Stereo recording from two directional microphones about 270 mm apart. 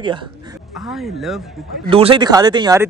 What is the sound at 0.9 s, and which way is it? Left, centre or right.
Speech, centre.